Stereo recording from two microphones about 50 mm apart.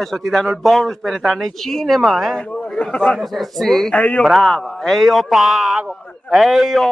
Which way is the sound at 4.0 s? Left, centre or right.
Left.